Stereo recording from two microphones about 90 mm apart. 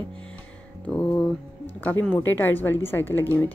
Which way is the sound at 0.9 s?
15° left (ahead or behind).